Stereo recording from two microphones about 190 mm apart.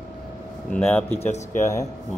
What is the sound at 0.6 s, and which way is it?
Speech, 5° left (ahead or behind).